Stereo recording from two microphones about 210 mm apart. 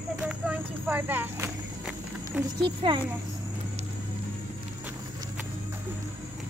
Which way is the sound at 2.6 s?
25° right (ahead or behind).